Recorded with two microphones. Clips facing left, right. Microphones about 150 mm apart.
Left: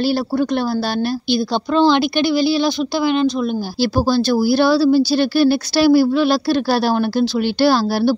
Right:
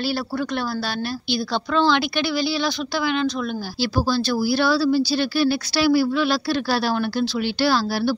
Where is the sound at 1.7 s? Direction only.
15° left (ahead or behind).